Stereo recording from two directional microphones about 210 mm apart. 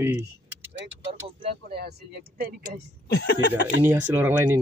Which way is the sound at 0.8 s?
55° right (ahead or behind).